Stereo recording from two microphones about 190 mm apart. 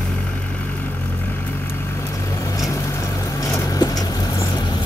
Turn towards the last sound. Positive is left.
turn(degrees=20)  # may be behind; listen again after turning